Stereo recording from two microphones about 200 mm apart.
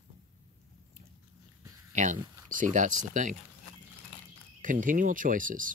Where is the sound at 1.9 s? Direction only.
40° right (ahead or behind).